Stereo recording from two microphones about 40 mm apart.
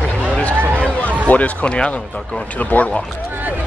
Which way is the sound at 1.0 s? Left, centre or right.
Left.